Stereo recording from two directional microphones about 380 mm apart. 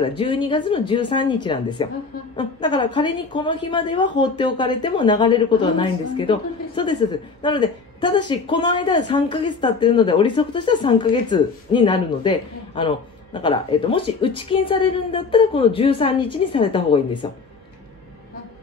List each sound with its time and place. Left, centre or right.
0.1 s a man's voice: centre